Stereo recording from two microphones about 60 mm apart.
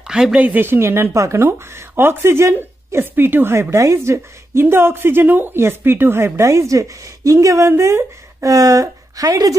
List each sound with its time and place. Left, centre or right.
0.0 s speech: centre
0.4 s speech: right
0.7 s a woman's voice: right
3.7 s a woman's voice: right
8.5 s speech: right